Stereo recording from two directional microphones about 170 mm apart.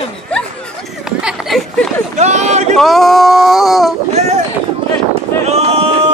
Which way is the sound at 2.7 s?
Centre (ahead or behind).